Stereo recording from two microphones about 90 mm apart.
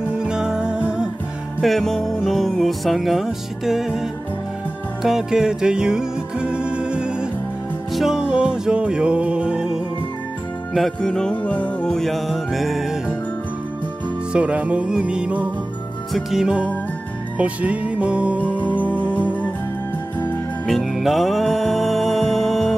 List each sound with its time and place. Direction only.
0.2 s music: 10° right (ahead or behind)
1.6 s music: centre (ahead or behind)
10.7 s music: 5° left (ahead or behind)
14.3 s music: 15° right (ahead or behind)
16.1 s music: centre (ahead or behind)
18.6 s organ: 20° left (ahead or behind)
20.6 s music: centre (ahead or behind)